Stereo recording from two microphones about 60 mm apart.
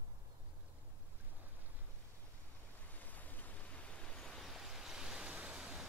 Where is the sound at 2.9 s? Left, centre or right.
Left.